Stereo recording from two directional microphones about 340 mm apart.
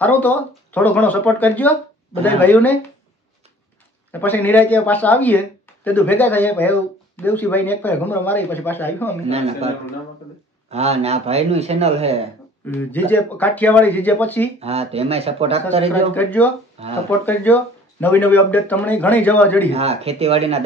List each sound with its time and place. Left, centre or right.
0.0 s speech: centre
4.1 s speech: centre
9.3 s a man's voice: centre
12.7 s speech: centre
14.6 s a man's voice: centre
16.2 s speech: centre
16.8 s speech: centre
17.3 s speech: centre
19.7 s a man's voice: centre